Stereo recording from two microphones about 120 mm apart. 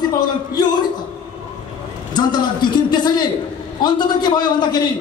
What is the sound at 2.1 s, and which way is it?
A man's voice, 40° left (ahead or behind).